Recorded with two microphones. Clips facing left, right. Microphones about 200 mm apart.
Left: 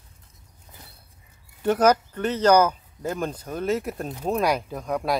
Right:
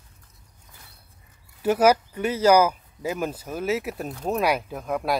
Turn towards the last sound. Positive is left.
turn(degrees=0)  # may be behind; listen again after turning